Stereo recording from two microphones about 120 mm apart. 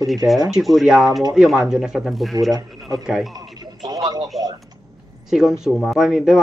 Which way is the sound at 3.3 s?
35° right (ahead or behind).